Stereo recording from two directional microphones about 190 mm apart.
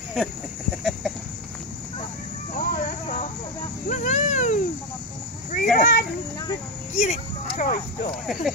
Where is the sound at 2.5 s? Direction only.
45° left (ahead or behind).